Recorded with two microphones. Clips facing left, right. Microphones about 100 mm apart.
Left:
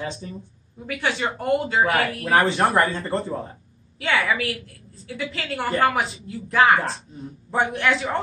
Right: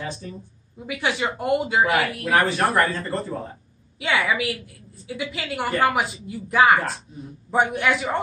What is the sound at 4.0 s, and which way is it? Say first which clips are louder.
A woman's voice: even; 15° right (ahead or behind).